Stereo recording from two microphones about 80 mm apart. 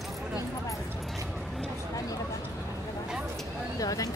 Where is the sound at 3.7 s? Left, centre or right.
Left.